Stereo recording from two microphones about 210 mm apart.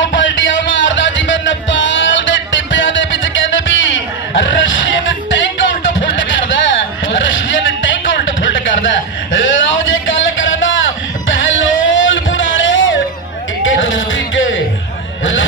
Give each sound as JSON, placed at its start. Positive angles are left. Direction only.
{"t": 0.0, "sound": "music", "side_deg": 60}
{"t": 5.6, "sound": "a sound", "side_deg": 60}
{"t": 13.6, "sound": "music", "side_deg": 65}